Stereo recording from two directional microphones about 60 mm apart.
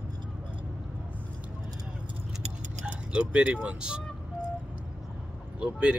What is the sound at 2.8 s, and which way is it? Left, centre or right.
Speech, centre.